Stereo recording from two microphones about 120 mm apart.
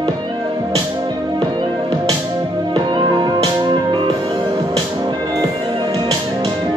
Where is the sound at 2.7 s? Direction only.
40° right (ahead or behind).